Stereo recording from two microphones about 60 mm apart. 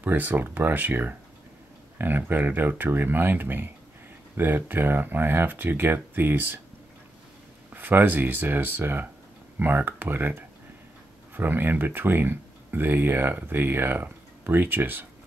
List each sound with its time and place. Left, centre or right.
0.0 s speech: right
7.7 s speech: right